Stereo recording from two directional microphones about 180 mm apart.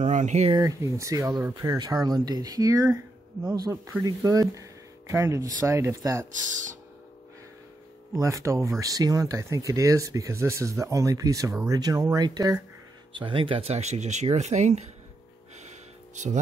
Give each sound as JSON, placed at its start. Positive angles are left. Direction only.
{"t": 0.0, "sound": "speech", "side_deg": -40}
{"t": 0.6, "sound": "speech", "side_deg": -15}
{"t": 8.1, "sound": "speech", "side_deg": -20}